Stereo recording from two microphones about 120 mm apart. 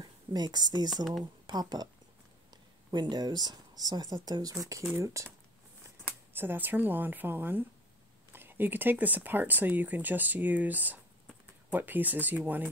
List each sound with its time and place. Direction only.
0.0 s a woman's voice: 35° right (ahead or behind)
6.3 s speech: 15° right (ahead or behind)